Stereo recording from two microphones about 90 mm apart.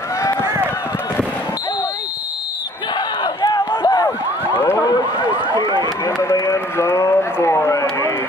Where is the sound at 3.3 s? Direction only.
65° left (ahead or behind).